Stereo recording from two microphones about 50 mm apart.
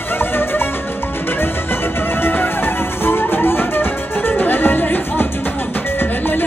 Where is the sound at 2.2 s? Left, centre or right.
Left.